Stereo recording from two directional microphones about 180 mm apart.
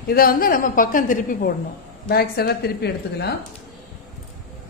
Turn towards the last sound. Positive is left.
turn(degrees=65)  # may be behind; listen again after turning